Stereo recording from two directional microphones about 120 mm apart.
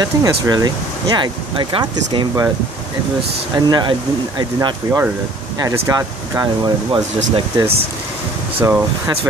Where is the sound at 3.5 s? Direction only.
35° right (ahead or behind).